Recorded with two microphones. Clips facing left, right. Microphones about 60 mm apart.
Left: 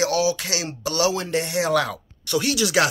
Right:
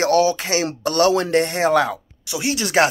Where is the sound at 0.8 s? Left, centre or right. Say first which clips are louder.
Right 5 dB; right.